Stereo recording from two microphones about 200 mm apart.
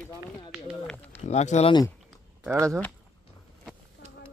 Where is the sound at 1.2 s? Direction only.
35° left (ahead or behind).